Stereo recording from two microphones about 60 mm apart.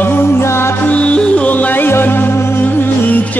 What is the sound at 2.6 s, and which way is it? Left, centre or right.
Music, left.